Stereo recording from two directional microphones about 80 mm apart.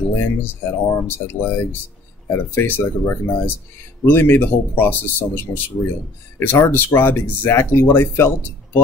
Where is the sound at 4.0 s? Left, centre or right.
Left.